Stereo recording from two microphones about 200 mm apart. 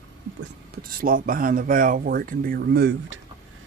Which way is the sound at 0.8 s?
45° right (ahead or behind).